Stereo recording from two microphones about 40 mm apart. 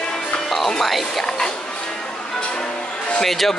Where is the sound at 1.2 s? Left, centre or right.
Centre.